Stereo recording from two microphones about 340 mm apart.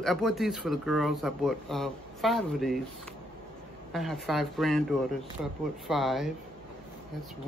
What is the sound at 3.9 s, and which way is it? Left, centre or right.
Speech, centre.